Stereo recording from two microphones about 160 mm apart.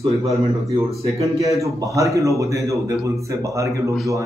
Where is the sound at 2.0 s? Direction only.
20° right (ahead or behind).